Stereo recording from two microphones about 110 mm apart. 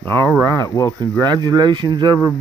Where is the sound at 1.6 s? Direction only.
45° right (ahead or behind).